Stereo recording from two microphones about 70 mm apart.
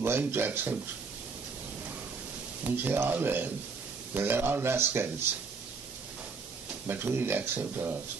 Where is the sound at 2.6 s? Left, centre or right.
Right.